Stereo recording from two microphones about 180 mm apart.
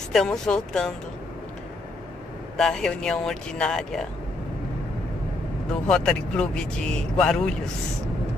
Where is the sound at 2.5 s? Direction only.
5° left (ahead or behind).